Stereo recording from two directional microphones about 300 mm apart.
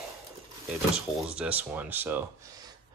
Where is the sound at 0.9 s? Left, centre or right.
Centre.